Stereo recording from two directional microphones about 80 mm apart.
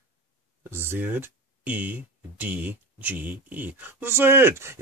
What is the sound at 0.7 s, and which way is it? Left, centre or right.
Speech, right.